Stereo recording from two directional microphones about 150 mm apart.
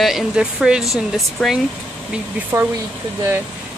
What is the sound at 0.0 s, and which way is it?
Speech, centre (ahead or behind).